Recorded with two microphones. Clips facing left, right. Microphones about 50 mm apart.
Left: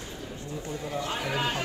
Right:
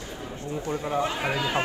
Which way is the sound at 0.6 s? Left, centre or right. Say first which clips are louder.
Right 7 dB; right.